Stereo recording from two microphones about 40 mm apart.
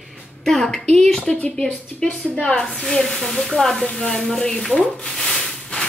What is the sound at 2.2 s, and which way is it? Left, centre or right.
Speech, centre.